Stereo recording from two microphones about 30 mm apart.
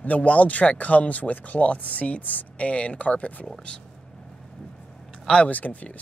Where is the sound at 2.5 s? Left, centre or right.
Left.